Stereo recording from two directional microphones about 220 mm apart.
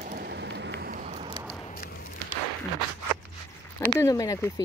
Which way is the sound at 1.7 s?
40° left (ahead or behind).